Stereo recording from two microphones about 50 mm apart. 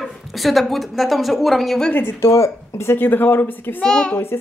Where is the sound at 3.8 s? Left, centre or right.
Centre.